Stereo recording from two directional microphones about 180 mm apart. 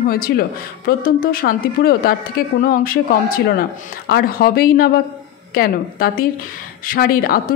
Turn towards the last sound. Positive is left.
turn(degrees=55)  # may be behind; listen again after turning